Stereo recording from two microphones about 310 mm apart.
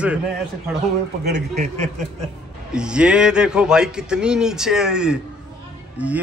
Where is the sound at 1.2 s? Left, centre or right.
Right.